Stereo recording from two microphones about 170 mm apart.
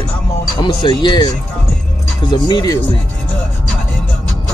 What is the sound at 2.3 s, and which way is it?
Speech, 25° left (ahead or behind).